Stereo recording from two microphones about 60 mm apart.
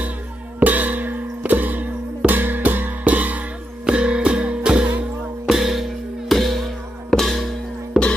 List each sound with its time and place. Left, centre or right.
0.6 s music: right
5.5 s music: centre
8.0 s music: centre